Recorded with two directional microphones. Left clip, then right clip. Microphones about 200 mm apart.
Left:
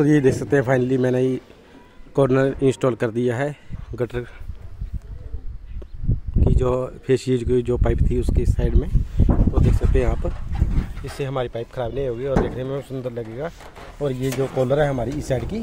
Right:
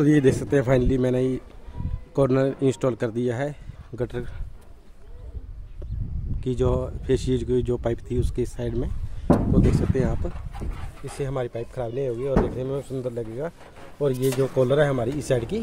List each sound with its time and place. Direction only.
0.0 s speech: centre (ahead or behind)
6.4 s speech: 10° left (ahead or behind)
9.3 s speech: 55° left (ahead or behind)
9.8 s speech: 15° left (ahead or behind)
14.0 s speech: centre (ahead or behind)